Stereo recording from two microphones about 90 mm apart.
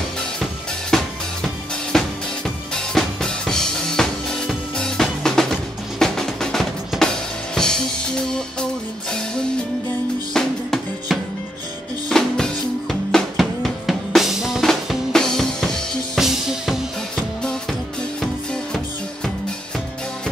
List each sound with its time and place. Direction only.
0.4 s music: 5° left (ahead or behind)
2.7 s drum kit: 5° left (ahead or behind)
7.5 s music: 5° left (ahead or behind)
17.4 s music: 10° left (ahead or behind)